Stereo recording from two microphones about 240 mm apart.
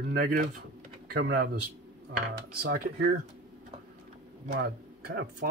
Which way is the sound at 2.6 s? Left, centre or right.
Right.